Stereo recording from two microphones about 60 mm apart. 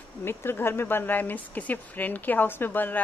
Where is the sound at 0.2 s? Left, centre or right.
Left.